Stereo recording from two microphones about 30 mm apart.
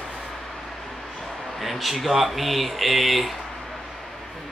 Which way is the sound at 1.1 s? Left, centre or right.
Centre.